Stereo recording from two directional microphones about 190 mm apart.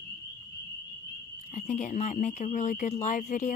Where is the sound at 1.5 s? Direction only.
40° left (ahead or behind).